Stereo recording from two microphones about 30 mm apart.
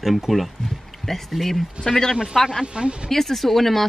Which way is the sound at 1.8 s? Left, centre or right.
Right.